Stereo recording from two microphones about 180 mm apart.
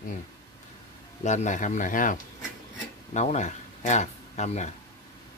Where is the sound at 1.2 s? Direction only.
40° left (ahead or behind).